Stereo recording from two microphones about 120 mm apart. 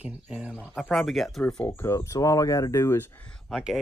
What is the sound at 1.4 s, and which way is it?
Speech, 15° left (ahead or behind).